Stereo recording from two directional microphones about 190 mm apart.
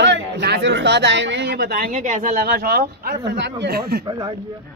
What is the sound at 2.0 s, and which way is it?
Speech, 40° right (ahead or behind).